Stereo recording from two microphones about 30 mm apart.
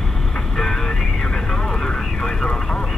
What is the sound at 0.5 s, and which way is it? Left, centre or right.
Vehicle, centre.